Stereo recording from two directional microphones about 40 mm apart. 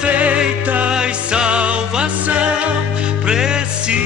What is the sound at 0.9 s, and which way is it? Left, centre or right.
Music, right.